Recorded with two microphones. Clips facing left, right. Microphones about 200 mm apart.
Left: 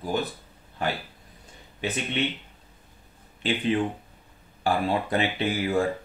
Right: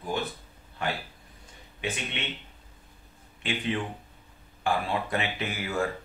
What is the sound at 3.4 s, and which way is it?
Speech, 35° left (ahead or behind).